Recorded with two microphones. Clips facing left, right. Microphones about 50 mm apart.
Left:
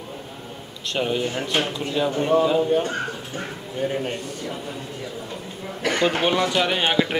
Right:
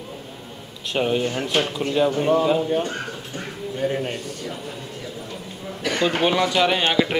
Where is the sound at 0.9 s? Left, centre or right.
Centre.